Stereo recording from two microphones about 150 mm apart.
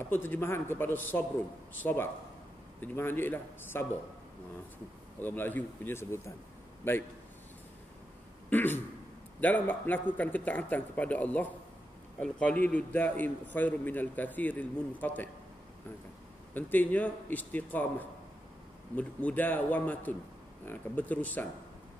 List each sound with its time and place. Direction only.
0.0 s a man's voice: 15° left (ahead or behind)
5.2 s a man's voice: 15° left (ahead or behind)
8.5 s a man's voice: 15° left (ahead or behind)
16.5 s a man's voice: 10° left (ahead or behind)